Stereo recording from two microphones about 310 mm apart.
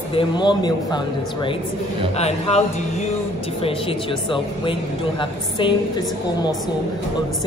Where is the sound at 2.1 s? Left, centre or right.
Centre.